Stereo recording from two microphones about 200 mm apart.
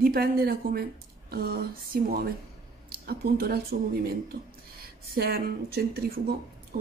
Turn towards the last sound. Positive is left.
turn(degrees=-50)  # may be behind; listen again after turning